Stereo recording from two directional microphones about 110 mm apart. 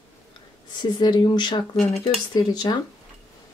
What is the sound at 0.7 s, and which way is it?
Speech, 40° left (ahead or behind).